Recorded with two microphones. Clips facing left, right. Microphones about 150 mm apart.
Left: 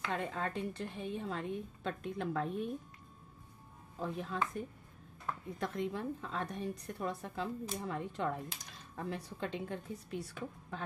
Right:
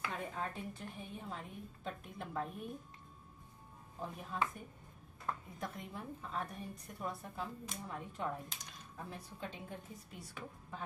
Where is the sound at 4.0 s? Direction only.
80° left.